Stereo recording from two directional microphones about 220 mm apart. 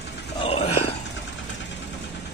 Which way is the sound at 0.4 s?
25° left (ahead or behind).